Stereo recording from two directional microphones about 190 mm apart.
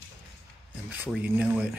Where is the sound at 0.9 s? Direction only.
10° right (ahead or behind).